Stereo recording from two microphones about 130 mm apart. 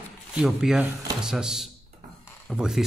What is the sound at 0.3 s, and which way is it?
Speech, 5° right (ahead or behind).